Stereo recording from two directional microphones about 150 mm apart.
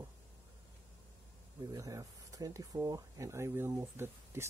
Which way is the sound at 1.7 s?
20° right (ahead or behind).